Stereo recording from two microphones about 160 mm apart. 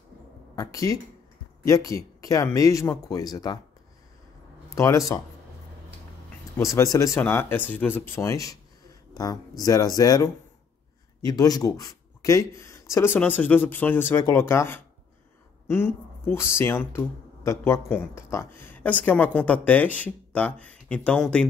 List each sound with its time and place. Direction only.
0.6 s speech: 20° left (ahead or behind)
4.6 s speech: 20° left (ahead or behind)
6.6 s speech: 20° left (ahead or behind)